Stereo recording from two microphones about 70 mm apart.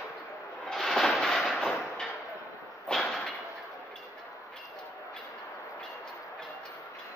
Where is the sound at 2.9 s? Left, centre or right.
Centre.